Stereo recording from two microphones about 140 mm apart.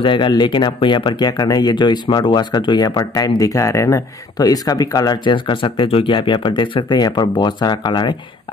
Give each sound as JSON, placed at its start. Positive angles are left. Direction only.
{"t": 0.0, "sound": "speech", "side_deg": 35}